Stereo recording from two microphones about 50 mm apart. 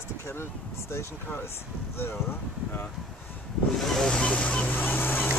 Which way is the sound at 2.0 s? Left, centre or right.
Left.